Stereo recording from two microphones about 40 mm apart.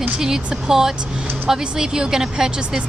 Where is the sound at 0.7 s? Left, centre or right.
Centre.